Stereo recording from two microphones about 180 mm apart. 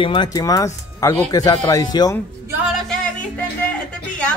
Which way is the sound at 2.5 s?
10° right (ahead or behind).